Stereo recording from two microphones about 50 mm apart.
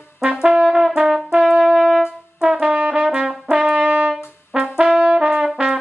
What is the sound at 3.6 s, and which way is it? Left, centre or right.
Brass instrument, right.